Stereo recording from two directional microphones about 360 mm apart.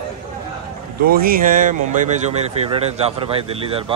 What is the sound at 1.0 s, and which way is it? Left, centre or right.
Speech, right.